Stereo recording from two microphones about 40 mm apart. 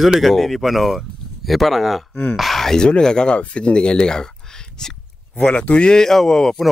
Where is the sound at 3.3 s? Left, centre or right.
Left.